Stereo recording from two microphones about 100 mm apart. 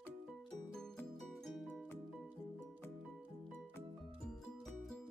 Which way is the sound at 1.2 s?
5° left (ahead or behind).